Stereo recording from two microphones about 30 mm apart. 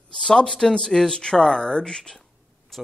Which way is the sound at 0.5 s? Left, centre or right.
Left.